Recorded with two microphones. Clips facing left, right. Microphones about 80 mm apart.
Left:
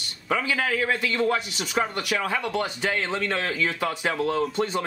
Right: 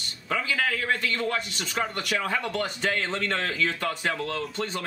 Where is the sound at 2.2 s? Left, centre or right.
Centre.